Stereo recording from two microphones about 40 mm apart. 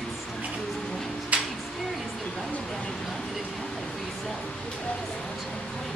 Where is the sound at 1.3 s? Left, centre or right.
Right.